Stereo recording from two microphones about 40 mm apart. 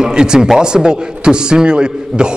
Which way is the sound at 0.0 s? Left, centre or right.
Centre.